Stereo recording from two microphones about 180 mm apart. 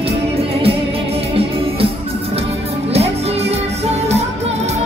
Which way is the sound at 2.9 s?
35° right (ahead or behind).